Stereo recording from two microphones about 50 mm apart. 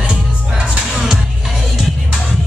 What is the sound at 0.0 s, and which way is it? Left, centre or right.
Music, right.